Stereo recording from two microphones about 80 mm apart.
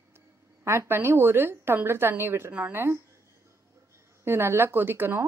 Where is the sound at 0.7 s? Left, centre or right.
Right.